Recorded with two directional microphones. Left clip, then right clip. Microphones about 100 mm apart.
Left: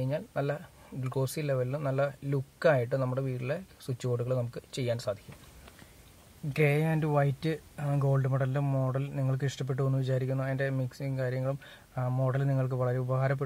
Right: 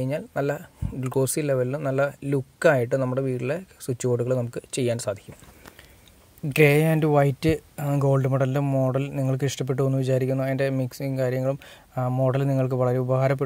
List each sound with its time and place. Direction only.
0.0 s speech: 40° right (ahead or behind)
6.5 s speech: 50° right (ahead or behind)